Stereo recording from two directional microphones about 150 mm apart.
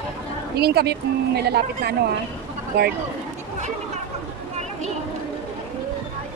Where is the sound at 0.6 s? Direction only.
90° right.